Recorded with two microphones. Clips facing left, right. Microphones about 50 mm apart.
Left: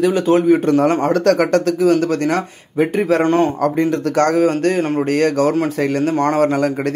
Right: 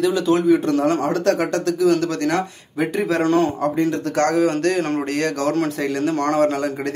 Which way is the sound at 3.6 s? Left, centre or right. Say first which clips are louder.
Left 3 dB; left.